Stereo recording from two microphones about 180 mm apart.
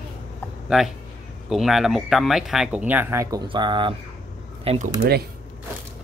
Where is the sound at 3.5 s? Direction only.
25° right (ahead or behind).